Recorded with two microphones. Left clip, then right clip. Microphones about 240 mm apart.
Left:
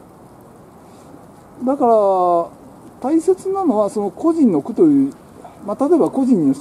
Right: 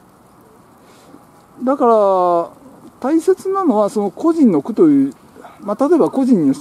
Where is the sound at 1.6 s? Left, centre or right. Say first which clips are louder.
Right 1 dB; centre.